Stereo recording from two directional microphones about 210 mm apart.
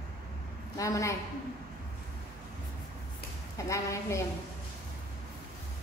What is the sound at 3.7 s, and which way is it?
Speech, 15° left (ahead or behind).